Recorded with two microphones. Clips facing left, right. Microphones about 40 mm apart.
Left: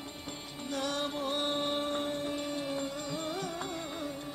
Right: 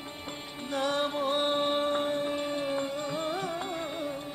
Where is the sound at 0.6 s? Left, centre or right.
Right.